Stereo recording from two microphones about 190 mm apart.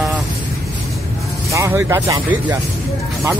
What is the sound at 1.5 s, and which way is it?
Speech, 15° right (ahead or behind).